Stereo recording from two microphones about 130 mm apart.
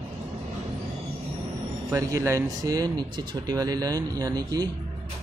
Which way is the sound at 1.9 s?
25° right (ahead or behind).